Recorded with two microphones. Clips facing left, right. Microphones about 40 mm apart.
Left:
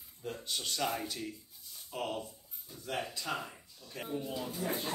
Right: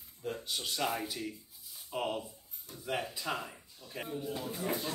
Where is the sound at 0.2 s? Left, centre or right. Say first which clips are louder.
Right 1 dB; centre.